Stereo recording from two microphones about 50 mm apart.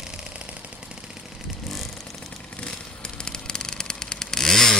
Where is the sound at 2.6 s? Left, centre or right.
Centre.